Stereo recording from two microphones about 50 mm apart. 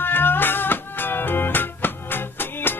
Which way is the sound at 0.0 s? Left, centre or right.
Left.